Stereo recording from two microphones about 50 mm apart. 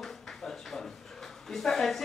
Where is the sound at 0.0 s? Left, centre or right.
Centre.